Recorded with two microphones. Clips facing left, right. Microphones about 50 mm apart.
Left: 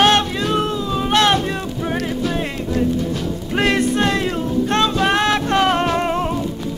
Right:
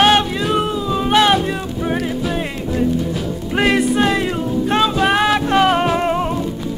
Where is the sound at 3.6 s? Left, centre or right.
Centre.